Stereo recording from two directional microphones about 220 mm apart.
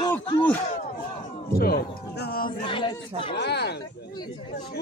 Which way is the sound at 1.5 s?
45° left (ahead or behind).